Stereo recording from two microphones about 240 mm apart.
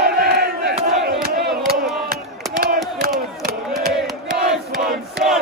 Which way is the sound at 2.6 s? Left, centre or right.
Right.